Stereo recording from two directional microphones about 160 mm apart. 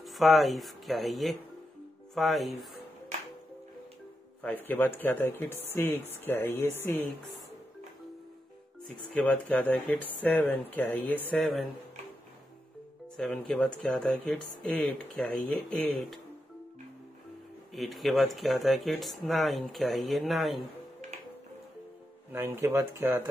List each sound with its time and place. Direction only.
0.0 s speech: centre (ahead or behind)
4.4 s speech: 10° left (ahead or behind)
9.1 s speech: 10° left (ahead or behind)
13.1 s speech: 5° left (ahead or behind)
17.7 s speech: centre (ahead or behind)
22.3 s speech: 15° right (ahead or behind)